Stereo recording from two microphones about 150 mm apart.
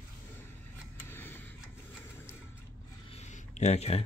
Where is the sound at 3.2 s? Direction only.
50° left (ahead or behind).